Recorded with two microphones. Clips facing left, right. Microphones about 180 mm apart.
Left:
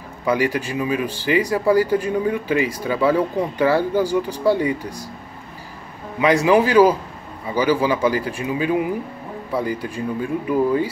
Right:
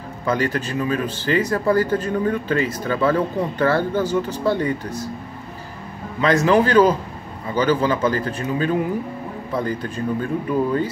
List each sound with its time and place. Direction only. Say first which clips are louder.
0.2 s speech: left 2 dB; 10° left (ahead or behind)
6.2 s speech: left 1 dB; 10° left (ahead or behind)